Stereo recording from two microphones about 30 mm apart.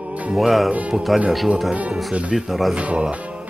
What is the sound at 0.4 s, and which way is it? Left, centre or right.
Speech, centre.